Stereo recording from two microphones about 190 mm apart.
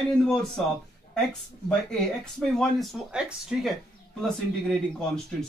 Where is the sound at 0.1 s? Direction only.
5° left (ahead or behind).